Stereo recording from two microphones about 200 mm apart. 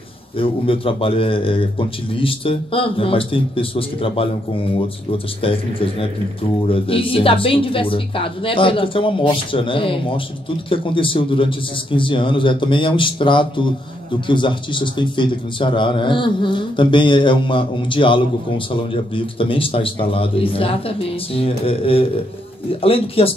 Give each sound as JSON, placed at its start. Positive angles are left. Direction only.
{"t": 0.4, "sound": "speech", "side_deg": 25}